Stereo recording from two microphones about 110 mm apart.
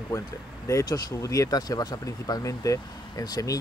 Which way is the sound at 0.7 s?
30° left (ahead or behind).